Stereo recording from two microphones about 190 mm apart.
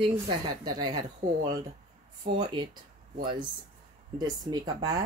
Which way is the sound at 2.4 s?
25° right (ahead or behind).